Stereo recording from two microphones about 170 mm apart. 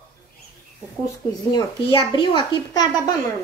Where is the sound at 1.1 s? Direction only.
25° left (ahead or behind).